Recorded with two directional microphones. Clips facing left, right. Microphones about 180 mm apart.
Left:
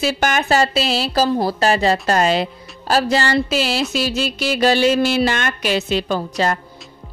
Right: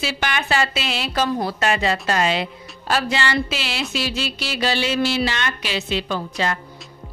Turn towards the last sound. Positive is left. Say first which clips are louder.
# left 4 dB
turn(degrees=40)  # may be behind; listen again after turning